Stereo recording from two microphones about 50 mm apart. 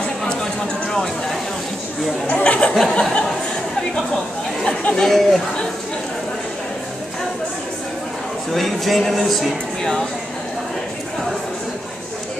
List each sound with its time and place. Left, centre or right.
0.2 s a sound: centre
2.2 s a sound: left
3.0 s speech: centre
4.6 s speech: centre
5.0 s speech: centre
8.5 s speech: centre